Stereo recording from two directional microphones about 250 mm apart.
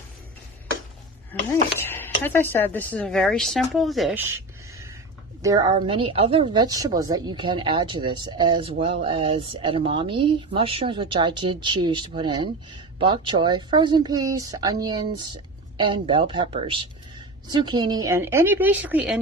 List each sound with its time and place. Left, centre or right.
1.9 s a sound: centre
2.2 s a woman's voice: centre
5.4 s a woman's voice: centre